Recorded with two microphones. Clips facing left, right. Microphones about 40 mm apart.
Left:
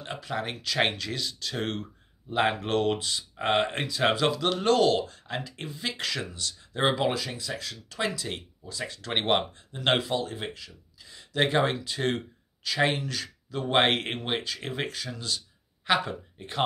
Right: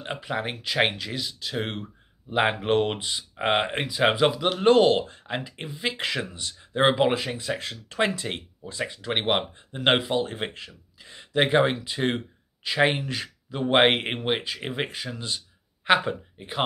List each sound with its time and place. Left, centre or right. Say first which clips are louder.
0.0 s speech: right 3 dB; right
8.8 s speech: right 2 dB; centre
9.5 s speech: right 3 dB; right
10.2 s speech: right 3 dB; right
11.3 s speech: right 4 dB; centre